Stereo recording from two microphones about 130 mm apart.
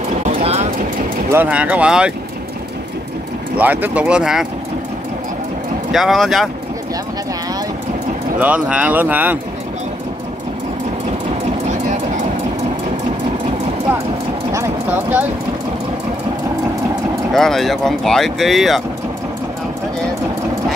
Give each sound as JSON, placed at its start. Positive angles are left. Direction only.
{"t": 0.4, "sound": "vehicle", "side_deg": -55}
{"t": 1.3, "sound": "speech", "side_deg": -10}
{"t": 3.5, "sound": "speech", "side_deg": -15}
{"t": 5.9, "sound": "speech", "side_deg": 0}
{"t": 8.4, "sound": "speech", "side_deg": -10}
{"t": 14.5, "sound": "a sound", "side_deg": -20}
{"t": 17.3, "sound": "speech", "side_deg": 5}